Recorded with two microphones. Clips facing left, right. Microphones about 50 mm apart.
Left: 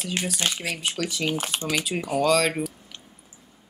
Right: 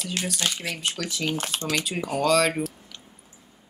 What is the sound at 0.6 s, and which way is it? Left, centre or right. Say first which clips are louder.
Speech: left 2 dB; centre.